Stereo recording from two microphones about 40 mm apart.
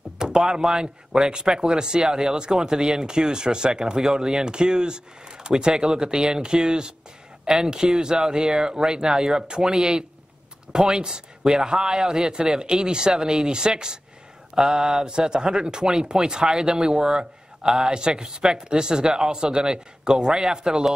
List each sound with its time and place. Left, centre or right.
0.2 s speech: centre